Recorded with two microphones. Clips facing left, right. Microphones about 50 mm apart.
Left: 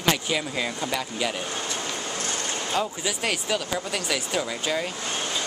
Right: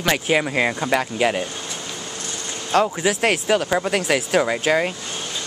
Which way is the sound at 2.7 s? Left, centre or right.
Right.